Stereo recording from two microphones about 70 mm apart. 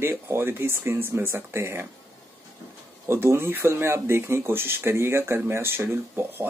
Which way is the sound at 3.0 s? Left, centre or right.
Right.